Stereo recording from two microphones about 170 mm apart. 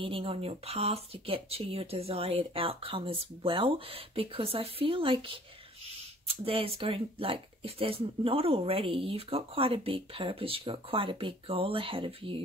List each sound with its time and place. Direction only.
0.0 s speech: 30° right (ahead or behind)